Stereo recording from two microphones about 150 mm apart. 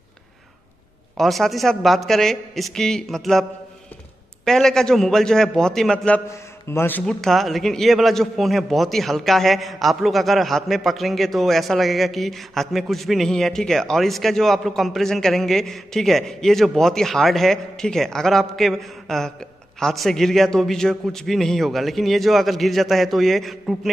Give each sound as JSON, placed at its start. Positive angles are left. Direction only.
{"t": 1.1, "sound": "a man's voice", "side_deg": 0}
{"t": 4.5, "sound": "a man's voice", "side_deg": 5}
{"t": 7.1, "sound": "a man's voice", "side_deg": 0}